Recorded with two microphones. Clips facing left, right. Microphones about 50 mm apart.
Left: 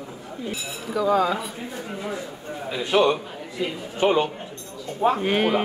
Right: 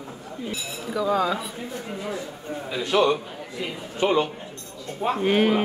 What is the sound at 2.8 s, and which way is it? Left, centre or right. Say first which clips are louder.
A man's voice: left 1 dB; left.